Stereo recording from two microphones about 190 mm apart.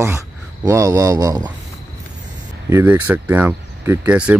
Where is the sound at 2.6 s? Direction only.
15° right (ahead or behind).